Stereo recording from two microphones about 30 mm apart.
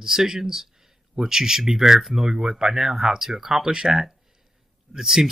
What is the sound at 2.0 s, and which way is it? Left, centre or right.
Speech, centre.